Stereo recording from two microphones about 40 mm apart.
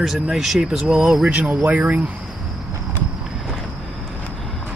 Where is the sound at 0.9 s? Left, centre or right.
Right.